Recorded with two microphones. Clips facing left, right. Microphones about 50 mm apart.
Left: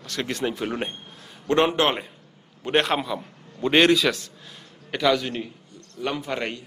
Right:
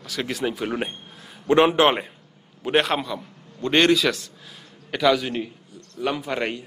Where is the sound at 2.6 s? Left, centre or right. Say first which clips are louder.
Right 1 dB; centre.